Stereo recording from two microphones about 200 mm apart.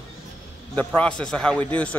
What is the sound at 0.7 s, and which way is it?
Speech, 5° left (ahead or behind).